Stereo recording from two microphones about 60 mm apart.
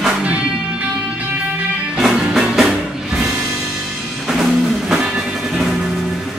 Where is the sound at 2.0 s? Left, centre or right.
Centre.